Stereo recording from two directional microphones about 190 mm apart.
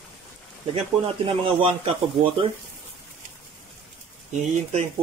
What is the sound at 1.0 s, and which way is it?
Speech, 30° right (ahead or behind).